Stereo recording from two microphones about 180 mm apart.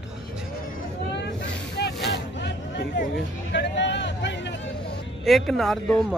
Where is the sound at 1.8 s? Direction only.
65° left (ahead or behind).